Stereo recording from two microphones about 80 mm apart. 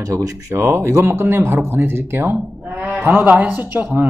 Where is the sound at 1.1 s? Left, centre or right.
Right.